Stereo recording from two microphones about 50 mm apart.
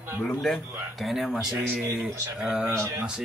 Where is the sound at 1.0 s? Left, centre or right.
Centre.